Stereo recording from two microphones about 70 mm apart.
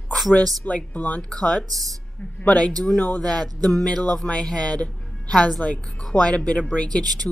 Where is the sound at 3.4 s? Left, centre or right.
Right.